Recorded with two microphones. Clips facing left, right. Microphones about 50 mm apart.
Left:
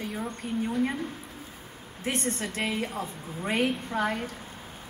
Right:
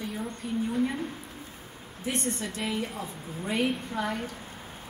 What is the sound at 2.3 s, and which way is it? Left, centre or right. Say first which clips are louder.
Speech: left 1 dB; left.